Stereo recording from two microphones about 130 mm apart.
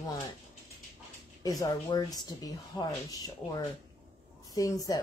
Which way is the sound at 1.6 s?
30° left (ahead or behind).